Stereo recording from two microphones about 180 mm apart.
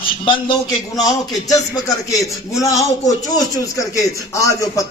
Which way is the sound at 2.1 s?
20° left (ahead or behind).